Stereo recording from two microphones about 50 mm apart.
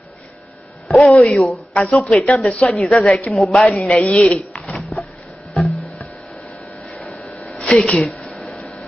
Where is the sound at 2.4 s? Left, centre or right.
Left.